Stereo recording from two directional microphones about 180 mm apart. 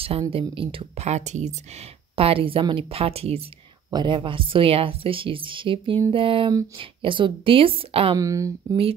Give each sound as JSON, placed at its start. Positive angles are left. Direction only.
{"t": 0.3, "sound": "speech", "side_deg": -30}
{"t": 8.2, "sound": "speech", "side_deg": -20}